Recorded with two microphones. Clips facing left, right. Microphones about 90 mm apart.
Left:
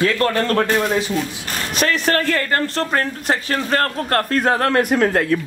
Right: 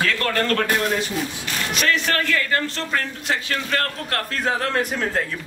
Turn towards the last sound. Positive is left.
turn(degrees=60)  # may be behind; listen again after turning